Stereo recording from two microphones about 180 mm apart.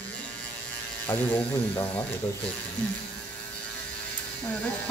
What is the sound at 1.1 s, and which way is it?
Speech, 10° left (ahead or behind).